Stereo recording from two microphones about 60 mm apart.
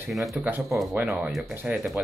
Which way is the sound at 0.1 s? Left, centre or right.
Centre.